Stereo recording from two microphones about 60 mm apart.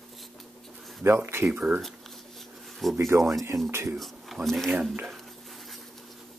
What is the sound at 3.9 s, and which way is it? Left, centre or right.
Speech, centre.